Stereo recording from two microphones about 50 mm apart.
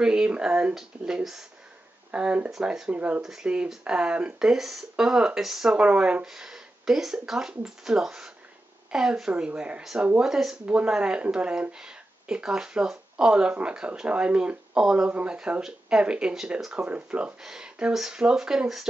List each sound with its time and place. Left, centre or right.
0.0 s speech: centre
2.0 s speech: right
2.6 s speech: centre
2.9 s speech: right
6.2 s speech: centre
9.3 s speech: right
10.2 s speech: centre
10.6 s speech: right
15.0 s speech: right
17.4 s speech: centre